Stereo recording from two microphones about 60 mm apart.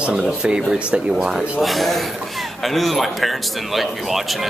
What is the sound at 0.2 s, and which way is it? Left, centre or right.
Speech, centre.